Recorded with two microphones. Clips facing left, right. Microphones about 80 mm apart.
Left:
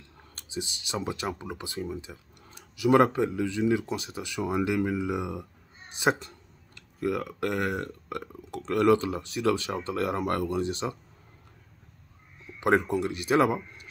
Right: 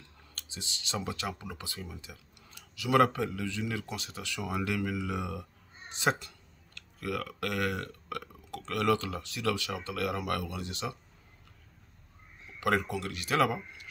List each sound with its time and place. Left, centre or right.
0.3 s speech: centre
12.5 s speech: left